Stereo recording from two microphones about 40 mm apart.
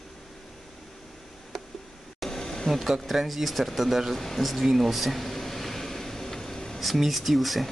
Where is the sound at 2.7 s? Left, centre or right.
Centre.